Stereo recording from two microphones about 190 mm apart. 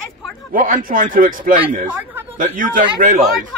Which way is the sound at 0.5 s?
45° right (ahead or behind).